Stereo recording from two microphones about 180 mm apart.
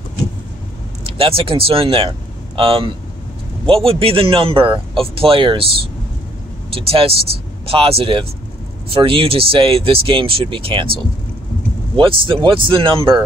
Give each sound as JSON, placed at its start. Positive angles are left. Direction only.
{"t": 1.0, "sound": "speech", "side_deg": -30}
{"t": 12.0, "sound": "speech", "side_deg": -30}